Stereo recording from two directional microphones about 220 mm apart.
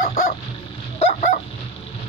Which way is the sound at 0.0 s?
35° left (ahead or behind).